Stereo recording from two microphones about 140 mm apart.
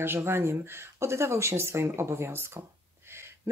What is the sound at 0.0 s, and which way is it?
Speech, 15° right (ahead or behind).